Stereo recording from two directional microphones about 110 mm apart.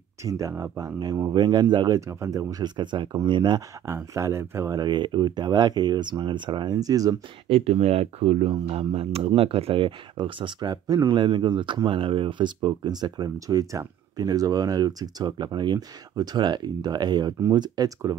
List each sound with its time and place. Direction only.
0.2 s speech: 30° right (ahead or behind)
1.3 s speech: 45° right (ahead or behind)
2.0 s speech: 25° right (ahead or behind); by 3.6 s 45° right (ahead or behind)
3.8 s speech: 25° right (ahead or behind)
4.7 s speech: 40° right (ahead or behind)
7.4 s speech: 65° right (ahead or behind); by 18.1 s 35° right (ahead or behind)